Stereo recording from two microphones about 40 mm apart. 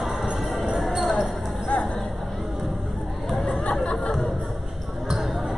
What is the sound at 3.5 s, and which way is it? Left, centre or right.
Chatter, left.